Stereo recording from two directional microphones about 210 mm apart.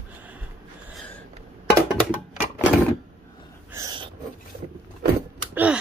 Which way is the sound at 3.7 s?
20° right (ahead or behind).